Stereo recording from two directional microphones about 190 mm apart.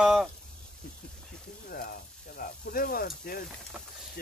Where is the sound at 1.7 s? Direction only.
50° left (ahead or behind).